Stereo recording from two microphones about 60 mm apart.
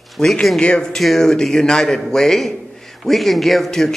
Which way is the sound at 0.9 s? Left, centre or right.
Centre.